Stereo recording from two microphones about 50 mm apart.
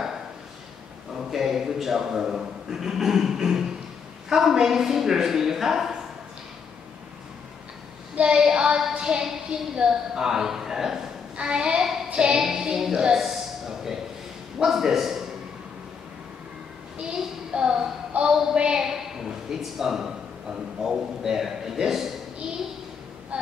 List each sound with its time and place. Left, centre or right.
1.3 s a man's voice: centre
8.2 s a man's voice: centre
17.2 s a woman's voice: centre
23.3 s a sound: right